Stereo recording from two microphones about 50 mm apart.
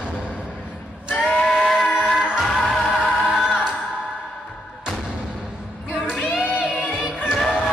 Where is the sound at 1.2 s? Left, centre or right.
Centre.